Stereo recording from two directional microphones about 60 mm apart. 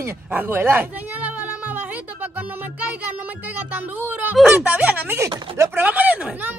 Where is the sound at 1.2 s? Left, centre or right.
Right.